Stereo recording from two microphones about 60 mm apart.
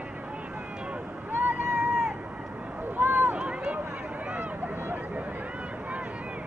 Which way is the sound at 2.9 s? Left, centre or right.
Right.